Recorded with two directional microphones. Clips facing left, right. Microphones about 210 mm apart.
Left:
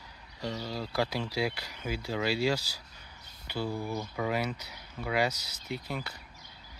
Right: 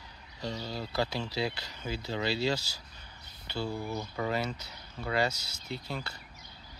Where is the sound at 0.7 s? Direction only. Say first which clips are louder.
Left 1 dB; 10° left (ahead or behind).